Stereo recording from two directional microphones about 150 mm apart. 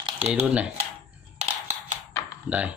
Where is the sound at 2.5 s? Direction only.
10° right (ahead or behind).